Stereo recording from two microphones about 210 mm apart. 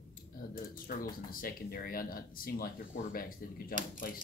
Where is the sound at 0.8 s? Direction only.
40° left (ahead or behind).